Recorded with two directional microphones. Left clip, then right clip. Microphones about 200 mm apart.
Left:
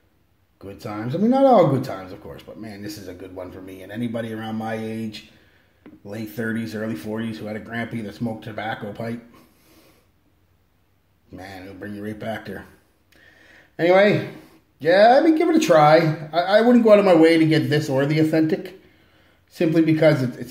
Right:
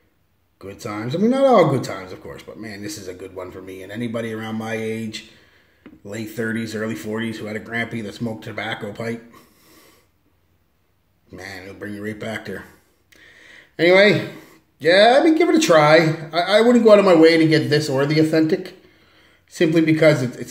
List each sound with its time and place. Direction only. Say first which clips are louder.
0.6 s speech: right 2 dB; 5° right (ahead or behind)
11.3 s speech: right 3 dB; 5° right (ahead or behind)
13.7 s speech: right 2 dB; 15° right (ahead or behind)